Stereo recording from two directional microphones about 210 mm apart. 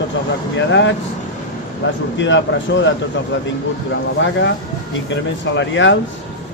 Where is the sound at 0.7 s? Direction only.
60° left (ahead or behind).